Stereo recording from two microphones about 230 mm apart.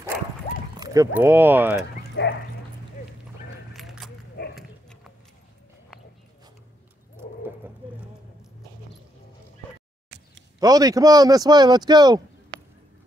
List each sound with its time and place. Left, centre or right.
0.9 s speech: centre
2.2 s speech: left
3.7 s keys jangling: centre
4.6 s clip-clop: centre
7.4 s dog: centre
10.6 s speech: centre